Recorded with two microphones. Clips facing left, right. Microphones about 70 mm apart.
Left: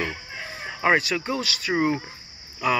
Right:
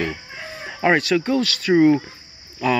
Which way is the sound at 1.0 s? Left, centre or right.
Centre.